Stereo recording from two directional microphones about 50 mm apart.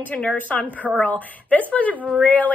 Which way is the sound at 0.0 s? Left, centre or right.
Left.